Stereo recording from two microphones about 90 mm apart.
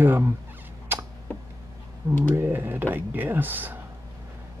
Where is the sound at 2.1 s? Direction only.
25° left (ahead or behind).